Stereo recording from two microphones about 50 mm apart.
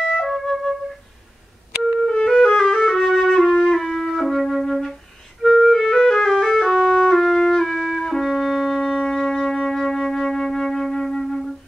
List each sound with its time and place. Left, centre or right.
0.0 s flute: centre
2.4 s flute: centre
3.5 s music: centre